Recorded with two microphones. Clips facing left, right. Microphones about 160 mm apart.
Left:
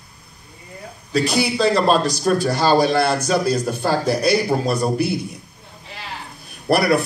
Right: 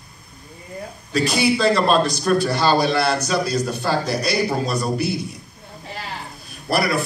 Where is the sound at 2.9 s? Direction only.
50° left (ahead or behind).